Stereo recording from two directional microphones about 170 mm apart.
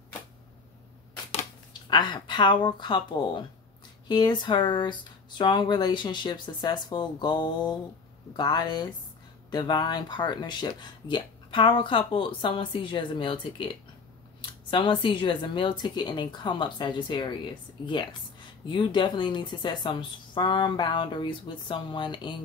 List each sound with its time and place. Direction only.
1.7 s speech: 25° left (ahead or behind)
18.7 s speech: 25° left (ahead or behind)